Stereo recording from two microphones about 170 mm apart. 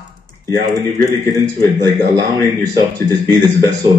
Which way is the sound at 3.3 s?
20° right (ahead or behind).